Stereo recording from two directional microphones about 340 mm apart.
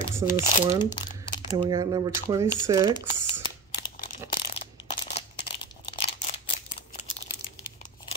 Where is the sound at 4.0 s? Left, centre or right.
Left.